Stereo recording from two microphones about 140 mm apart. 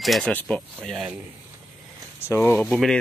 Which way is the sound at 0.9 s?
5° right (ahead or behind).